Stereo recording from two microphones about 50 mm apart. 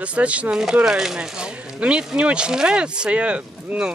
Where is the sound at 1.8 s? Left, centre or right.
Right.